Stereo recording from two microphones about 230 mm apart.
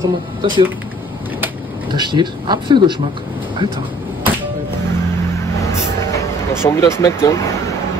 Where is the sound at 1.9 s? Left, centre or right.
Centre.